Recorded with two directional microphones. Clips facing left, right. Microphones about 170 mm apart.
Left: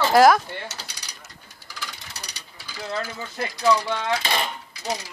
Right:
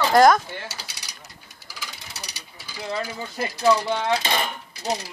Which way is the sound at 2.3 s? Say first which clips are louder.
Even; 10° right (ahead or behind).